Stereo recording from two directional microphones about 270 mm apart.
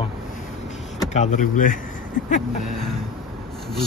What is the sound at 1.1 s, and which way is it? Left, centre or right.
Speech, left.